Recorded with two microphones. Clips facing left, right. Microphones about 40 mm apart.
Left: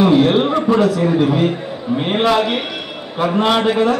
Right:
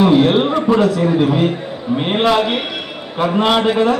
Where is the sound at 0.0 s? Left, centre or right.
Centre.